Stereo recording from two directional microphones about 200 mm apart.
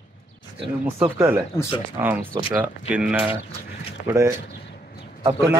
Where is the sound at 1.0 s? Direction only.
15° right (ahead or behind).